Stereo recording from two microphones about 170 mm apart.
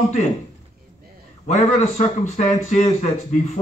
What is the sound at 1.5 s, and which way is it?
A man's voice, 45° left (ahead or behind).